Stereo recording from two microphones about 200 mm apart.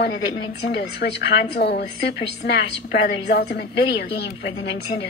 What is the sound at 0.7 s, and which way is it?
A woman's voice, 55° left (ahead or behind).